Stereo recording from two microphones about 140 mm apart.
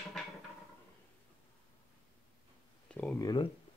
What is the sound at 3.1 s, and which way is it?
Speech, 25° left (ahead or behind).